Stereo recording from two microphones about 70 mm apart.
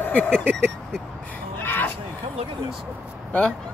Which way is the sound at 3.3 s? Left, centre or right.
Centre.